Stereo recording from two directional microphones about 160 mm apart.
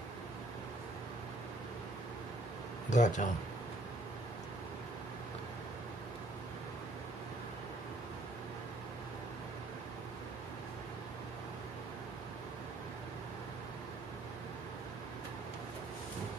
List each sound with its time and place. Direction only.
2.9 s speech: 50° left (ahead or behind)